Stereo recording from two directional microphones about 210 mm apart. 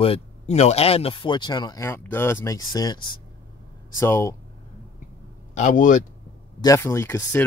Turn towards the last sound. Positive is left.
turn(degrees=10)  # may be behind; listen again after turning